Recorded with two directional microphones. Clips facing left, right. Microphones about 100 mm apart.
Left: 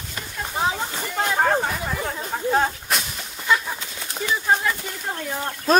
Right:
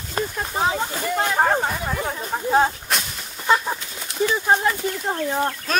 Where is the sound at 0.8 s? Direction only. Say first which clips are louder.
Right 3 dB; 5° right (ahead or behind).